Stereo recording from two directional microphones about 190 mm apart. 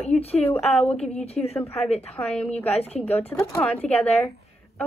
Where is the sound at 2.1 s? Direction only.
5° left (ahead or behind).